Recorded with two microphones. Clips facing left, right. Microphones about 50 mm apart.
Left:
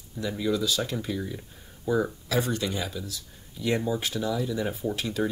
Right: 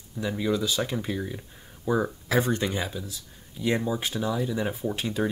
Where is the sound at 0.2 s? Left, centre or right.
Right.